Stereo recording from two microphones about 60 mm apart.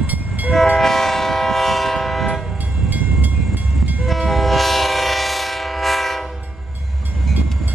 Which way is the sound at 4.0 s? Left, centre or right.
Centre.